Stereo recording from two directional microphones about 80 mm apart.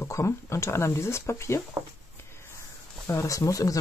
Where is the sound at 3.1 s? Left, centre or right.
Left.